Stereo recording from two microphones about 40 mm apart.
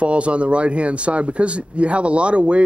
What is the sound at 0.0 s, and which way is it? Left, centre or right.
Speech, right.